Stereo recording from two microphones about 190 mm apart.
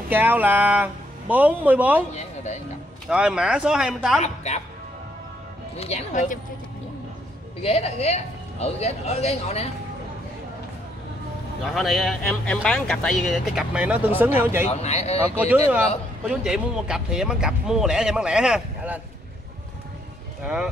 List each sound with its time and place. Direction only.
0.1 s speech: 10° right (ahead or behind)
3.1 s speech: 5° right (ahead or behind)
5.8 s speech: 35° left (ahead or behind)
7.6 s speech: 35° left (ahead or behind)
11.6 s speech: centre (ahead or behind)
14.7 s speech: 35° left (ahead or behind)
16.3 s speech: 5° right (ahead or behind)